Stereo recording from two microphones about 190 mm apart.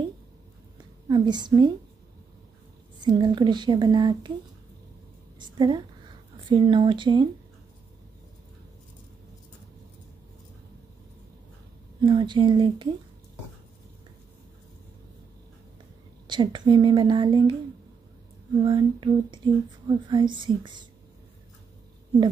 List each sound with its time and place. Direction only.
1.0 s speech: 20° right (ahead or behind)
3.0 s speech: 25° right (ahead or behind)
5.4 s a woman's voice: 25° right (ahead or behind)
12.0 s speech: 25° right (ahead or behind)
16.3 s speech: 25° right (ahead or behind)
18.6 s speech: 25° right (ahead or behind)